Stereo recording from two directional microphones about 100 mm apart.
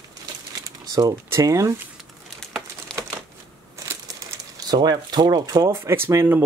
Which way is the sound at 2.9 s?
10° left (ahead or behind).